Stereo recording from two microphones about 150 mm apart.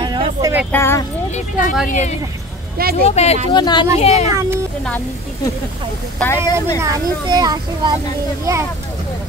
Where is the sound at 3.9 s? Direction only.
45° left (ahead or behind).